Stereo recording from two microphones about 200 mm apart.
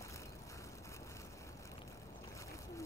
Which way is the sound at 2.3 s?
15° left (ahead or behind).